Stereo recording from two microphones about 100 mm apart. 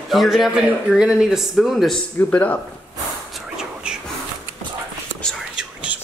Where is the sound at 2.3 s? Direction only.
15° left (ahead or behind).